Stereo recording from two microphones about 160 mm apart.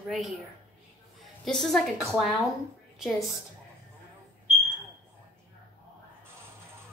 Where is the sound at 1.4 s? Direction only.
Centre (ahead or behind).